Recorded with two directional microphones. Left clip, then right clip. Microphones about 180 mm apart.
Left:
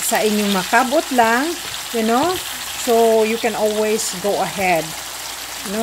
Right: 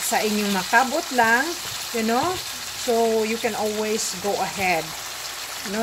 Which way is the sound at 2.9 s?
35° left (ahead or behind).